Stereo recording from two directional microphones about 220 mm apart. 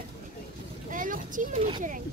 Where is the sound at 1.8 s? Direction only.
35° right (ahead or behind).